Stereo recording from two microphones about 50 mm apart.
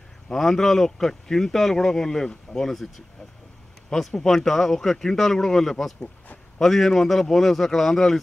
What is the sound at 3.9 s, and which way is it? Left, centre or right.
A man's voice, centre.